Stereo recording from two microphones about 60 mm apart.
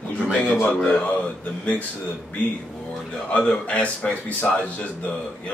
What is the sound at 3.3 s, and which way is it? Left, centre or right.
Speech, left.